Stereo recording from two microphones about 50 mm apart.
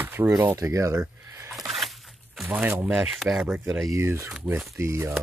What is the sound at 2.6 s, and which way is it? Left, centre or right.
Speech, right.